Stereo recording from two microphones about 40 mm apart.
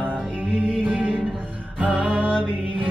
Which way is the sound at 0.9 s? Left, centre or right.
Right.